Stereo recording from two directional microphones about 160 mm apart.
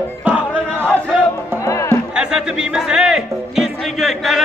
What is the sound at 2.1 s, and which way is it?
Music, 5° right (ahead or behind).